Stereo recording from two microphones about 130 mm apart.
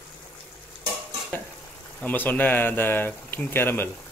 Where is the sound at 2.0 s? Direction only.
15° left (ahead or behind).